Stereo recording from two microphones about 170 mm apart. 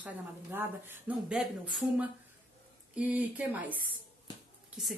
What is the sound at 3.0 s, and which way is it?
A woman's voice, 10° right (ahead or behind).